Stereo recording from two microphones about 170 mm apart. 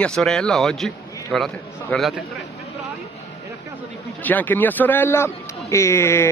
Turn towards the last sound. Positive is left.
turn(degrees=15)  # may be behind; listen again after turning